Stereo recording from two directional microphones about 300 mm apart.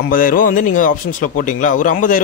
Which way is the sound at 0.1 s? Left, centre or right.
Left.